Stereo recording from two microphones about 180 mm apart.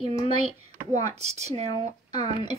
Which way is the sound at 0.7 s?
40° right (ahead or behind).